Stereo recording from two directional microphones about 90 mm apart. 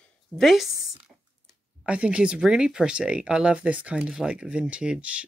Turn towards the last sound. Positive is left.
turn(degrees=-15)  # may be behind; listen again after turning